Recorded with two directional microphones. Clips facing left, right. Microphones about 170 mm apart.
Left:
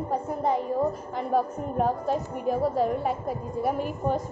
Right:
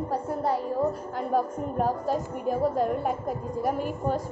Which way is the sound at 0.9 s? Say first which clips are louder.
Even; centre (ahead or behind).